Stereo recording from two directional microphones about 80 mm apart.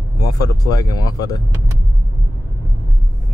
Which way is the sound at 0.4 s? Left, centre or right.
Left.